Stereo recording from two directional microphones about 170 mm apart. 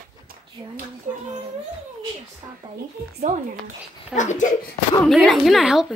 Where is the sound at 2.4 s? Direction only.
25° right (ahead or behind).